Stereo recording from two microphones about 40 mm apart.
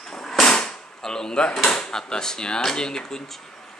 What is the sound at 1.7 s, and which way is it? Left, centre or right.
Speech, centre.